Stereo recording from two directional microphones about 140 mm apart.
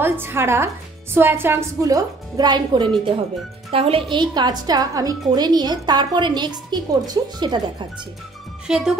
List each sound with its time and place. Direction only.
0.0 s a woman's voice: 15° right (ahead or behind); by 4.0 s 40° right (ahead or behind)
4.1 s a woman's voice: 30° right (ahead or behind)
8.6 s speech: 5° right (ahead or behind)